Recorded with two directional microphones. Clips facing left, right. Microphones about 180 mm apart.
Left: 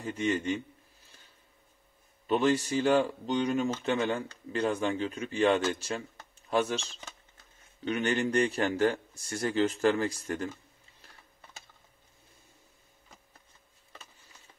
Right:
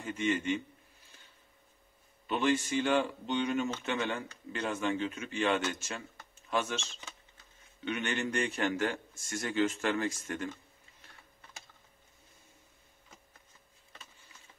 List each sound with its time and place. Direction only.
0.0 s speech: 35° left (ahead or behind)
2.2 s speech: 40° left (ahead or behind)